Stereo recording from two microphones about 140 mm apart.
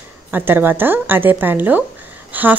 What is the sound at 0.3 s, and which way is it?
A woman's voice, 15° right (ahead or behind).